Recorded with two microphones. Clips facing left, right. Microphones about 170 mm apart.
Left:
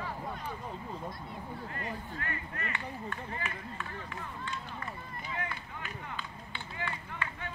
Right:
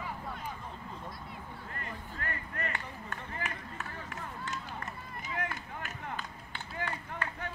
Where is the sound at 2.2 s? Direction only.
40° right (ahead or behind).